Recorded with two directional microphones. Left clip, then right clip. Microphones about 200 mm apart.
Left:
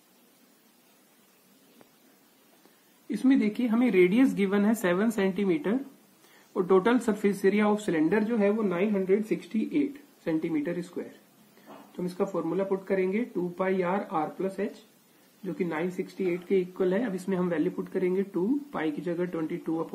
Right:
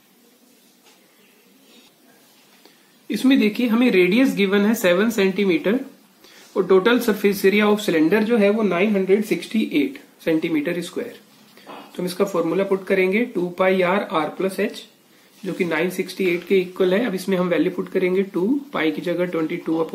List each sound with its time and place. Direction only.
3.1 s speech: 25° left (ahead or behind)